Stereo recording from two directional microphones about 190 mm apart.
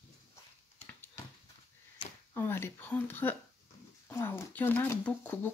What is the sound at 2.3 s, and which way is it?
Speech, 10° left (ahead or behind).